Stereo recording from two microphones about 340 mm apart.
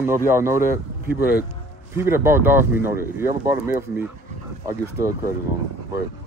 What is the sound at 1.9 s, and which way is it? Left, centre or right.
Speech, centre.